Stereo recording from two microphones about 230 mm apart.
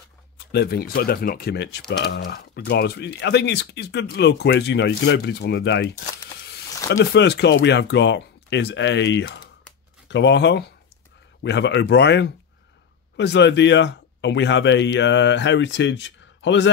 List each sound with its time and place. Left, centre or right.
0.5 s speech: left
6.9 s speech: left